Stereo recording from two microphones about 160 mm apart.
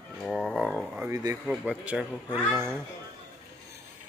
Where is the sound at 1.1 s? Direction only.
20° right (ahead or behind).